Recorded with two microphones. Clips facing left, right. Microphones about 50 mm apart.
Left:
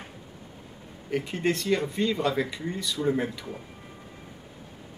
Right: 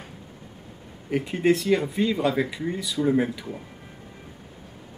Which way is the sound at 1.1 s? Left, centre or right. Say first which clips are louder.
Right 5 dB; centre.